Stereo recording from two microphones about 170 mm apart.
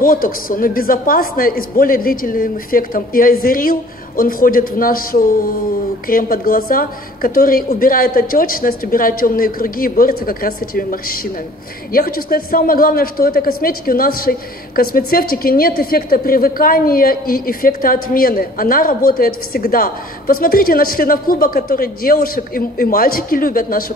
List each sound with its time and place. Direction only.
0.0 s a woman's voice: 60° left (ahead or behind)